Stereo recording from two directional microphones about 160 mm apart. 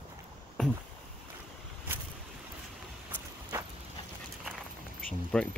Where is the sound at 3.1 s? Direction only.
20° right (ahead or behind).